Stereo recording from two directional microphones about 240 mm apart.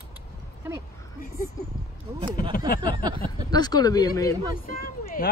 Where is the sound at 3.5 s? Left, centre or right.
Centre.